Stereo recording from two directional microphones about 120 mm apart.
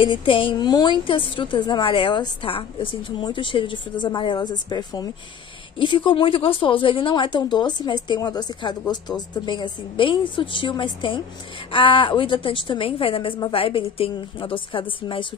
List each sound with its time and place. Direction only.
0.0 s a woman's voice: 45° left (ahead or behind)
5.8 s a woman's voice: 45° left (ahead or behind)